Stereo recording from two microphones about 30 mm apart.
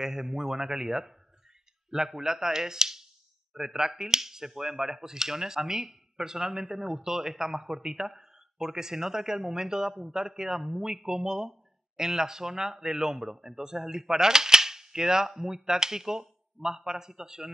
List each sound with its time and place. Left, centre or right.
0.0 s speech: centre